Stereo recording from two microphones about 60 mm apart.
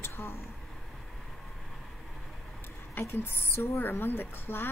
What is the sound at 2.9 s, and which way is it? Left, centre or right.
A woman's voice, left.